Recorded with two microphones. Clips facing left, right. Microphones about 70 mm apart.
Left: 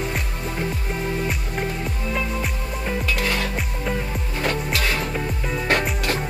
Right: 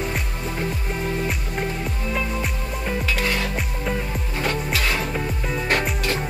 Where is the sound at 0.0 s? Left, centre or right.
Centre.